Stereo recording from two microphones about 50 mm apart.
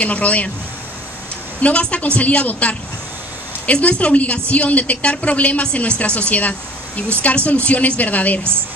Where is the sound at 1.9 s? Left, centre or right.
Left.